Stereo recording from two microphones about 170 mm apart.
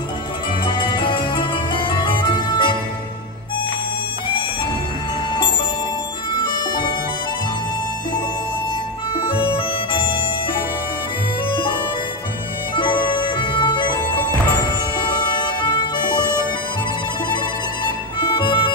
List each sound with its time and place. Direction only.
0.7 s music: 30° left (ahead or behind)
6.3 s music: 30° left (ahead or behind)
9.2 s music: 30° left (ahead or behind)
12.7 s music: 30° left (ahead or behind)
15.0 s music: 25° left (ahead or behind)
18.3 s music: 30° left (ahead or behind)